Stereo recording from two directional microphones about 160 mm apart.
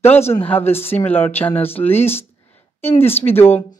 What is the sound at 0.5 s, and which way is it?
Speech, 15° left (ahead or behind).